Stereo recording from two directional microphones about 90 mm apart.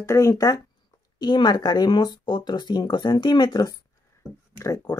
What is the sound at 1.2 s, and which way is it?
Speech, 50° left (ahead or behind).